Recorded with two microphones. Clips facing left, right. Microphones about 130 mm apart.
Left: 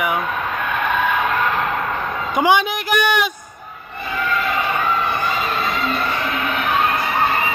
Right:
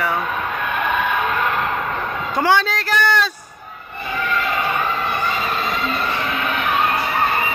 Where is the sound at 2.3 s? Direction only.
15° left (ahead or behind).